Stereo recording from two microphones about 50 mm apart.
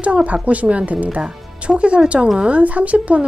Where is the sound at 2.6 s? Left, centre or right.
Right.